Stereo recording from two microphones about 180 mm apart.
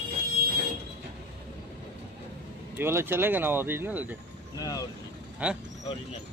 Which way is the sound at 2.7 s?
15° right (ahead or behind).